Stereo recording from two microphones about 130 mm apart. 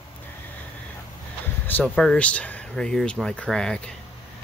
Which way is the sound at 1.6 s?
10° left (ahead or behind).